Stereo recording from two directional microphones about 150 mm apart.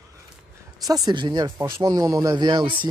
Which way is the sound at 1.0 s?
30° right (ahead or behind).